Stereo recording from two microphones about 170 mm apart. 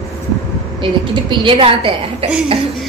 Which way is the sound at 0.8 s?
30° right (ahead or behind).